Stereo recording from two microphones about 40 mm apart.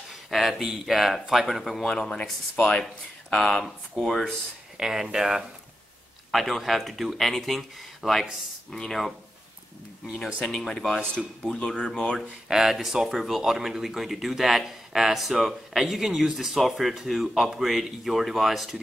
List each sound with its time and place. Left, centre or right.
0.1 s speech: centre
1.9 s speech: centre
4.7 s speech: centre
6.3 s speech: centre
8.7 s speech: centre
10.1 s speech: centre
12.2 s speech: centre